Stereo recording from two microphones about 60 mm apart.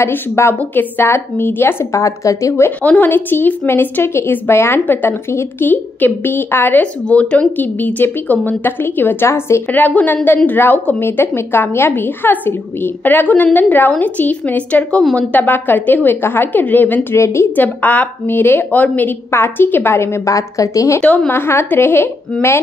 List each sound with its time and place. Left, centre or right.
0.0 s a woman's voice: left
1.9 s a woman's voice: left
2.8 s a woman's voice: left
7.1 s a woman's voice: left
9.7 s a woman's voice: left
17.1 s a woman's voice: left
17.6 s a woman's voice: left
20.3 s a woman's voice: left
21.3 s a woman's voice: left